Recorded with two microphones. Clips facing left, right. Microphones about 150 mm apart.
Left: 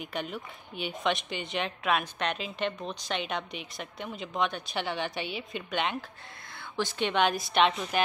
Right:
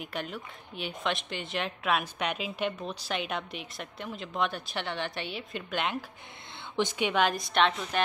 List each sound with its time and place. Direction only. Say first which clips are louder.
0.0 s a woman's voice: left 1 dB; centre (ahead or behind)
6.8 s a woman's voice: right 2 dB; 15° right (ahead or behind)
7.1 s a woman's voice: even; centre (ahead or behind)